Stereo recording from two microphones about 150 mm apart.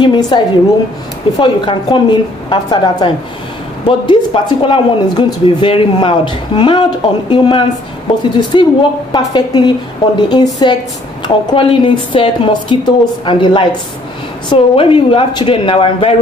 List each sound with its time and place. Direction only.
0.0 s a woman's voice: 30° left (ahead or behind)
1.4 s a woman's voice: 35° left (ahead or behind)